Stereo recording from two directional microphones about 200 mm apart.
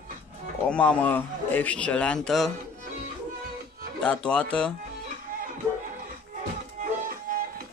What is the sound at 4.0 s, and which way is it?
Speech, 5° left (ahead or behind).